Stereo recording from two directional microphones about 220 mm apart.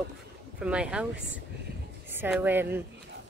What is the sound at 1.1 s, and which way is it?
Speech, 60° left (ahead or behind).